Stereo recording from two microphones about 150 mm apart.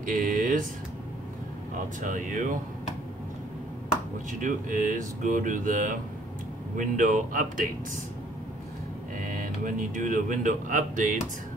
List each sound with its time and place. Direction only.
0.0 s speech: 60° right (ahead or behind)
2.0 s speech: 60° right (ahead or behind)
4.3 s speech: 60° right (ahead or behind)
9.2 s speech: 65° right (ahead or behind)